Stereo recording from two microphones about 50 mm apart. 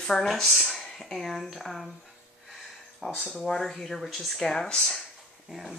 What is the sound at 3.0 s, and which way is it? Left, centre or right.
Speech, centre.